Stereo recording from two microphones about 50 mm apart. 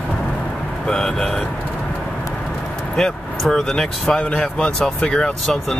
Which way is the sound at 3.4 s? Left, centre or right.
Centre.